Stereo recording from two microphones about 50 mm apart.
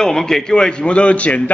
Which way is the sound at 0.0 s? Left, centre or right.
Centre.